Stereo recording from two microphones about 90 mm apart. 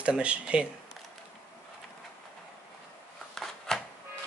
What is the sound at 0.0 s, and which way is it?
Speech, 15° right (ahead or behind).